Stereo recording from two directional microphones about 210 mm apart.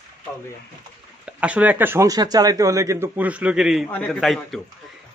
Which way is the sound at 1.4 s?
5° right (ahead or behind).